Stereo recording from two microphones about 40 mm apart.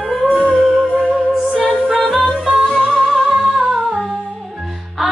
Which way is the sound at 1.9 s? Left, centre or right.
Centre.